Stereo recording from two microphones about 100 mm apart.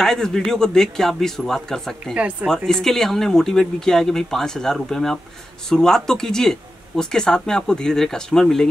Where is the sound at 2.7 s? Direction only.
5° left (ahead or behind).